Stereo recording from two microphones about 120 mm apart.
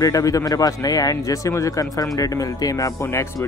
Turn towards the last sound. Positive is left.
turn(degrees=20)  # may be behind; listen again after turning